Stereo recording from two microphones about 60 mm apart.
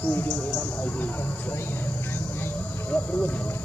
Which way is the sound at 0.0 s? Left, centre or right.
Left.